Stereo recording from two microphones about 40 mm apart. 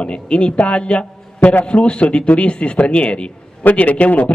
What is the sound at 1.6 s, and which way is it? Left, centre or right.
A man's voice, left.